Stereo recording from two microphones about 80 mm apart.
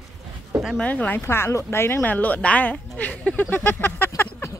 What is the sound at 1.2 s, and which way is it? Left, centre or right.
Speech, left.